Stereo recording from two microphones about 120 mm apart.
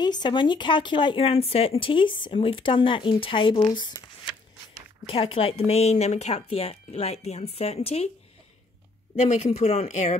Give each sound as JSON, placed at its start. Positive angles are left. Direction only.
{"t": 0.0, "sound": "speech", "side_deg": 35}
{"t": 5.1, "sound": "speech", "side_deg": 50}
{"t": 9.3, "sound": "speech", "side_deg": 60}